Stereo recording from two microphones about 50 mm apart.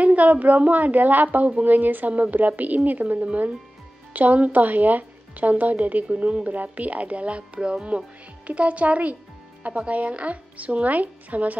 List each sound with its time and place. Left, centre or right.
0.0 s a woman's voice: right
6.0 s speech: right